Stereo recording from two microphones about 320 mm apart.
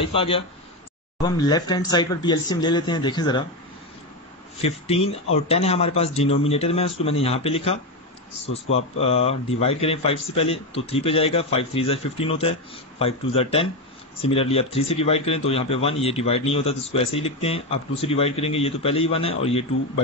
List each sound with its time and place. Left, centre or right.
0.0 s speech: centre
4.6 s a man's voice: centre